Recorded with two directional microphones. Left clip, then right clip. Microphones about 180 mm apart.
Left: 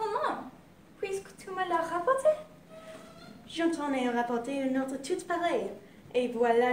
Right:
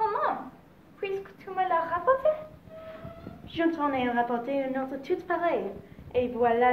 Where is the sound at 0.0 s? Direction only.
15° left (ahead or behind).